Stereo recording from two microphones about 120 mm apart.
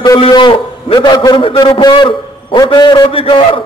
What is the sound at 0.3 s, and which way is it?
A man's voice, 45° left (ahead or behind).